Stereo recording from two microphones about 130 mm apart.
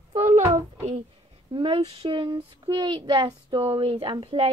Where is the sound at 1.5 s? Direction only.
45° right (ahead or behind).